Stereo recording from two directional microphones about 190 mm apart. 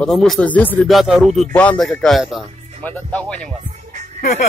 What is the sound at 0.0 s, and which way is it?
Speech, centre (ahead or behind).